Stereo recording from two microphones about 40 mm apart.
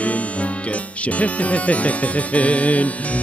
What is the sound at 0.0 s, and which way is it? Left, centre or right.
Music, left.